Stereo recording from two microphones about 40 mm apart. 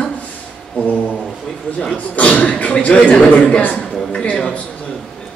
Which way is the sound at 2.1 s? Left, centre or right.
Left.